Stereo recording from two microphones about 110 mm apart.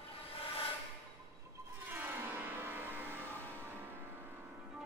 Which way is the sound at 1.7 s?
20° right (ahead or behind).